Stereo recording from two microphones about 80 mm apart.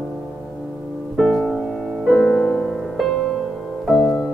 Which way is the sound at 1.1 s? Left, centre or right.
Centre.